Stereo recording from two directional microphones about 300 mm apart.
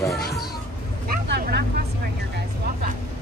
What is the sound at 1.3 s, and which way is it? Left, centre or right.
Vehicle, right.